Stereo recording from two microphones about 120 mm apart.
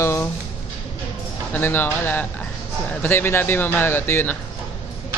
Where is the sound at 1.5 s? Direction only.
15° left (ahead or behind).